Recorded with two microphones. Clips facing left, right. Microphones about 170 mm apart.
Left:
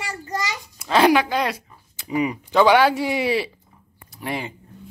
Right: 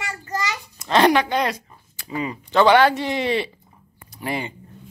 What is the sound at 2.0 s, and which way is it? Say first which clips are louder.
Speech: left 5 dB; 15° left (ahead or behind).